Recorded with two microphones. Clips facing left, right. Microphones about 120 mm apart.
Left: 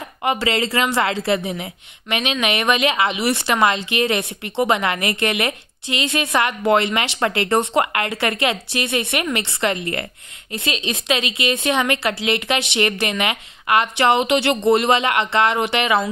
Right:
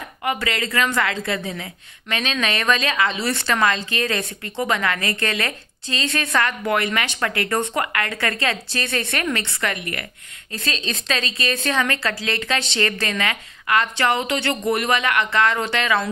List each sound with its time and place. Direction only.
0.2 s a woman's voice: 25° left (ahead or behind)